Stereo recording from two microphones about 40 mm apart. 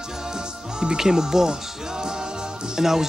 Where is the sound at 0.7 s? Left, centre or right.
Centre.